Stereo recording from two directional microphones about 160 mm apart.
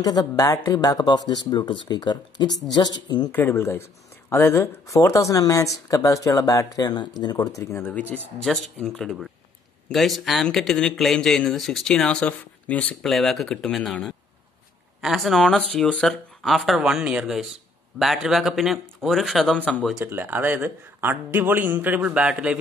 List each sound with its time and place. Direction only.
0.0 s speech: 25° left (ahead or behind)
3.3 s speech: 15° left (ahead or behind)
20.1 s a man's voice: 10° right (ahead or behind)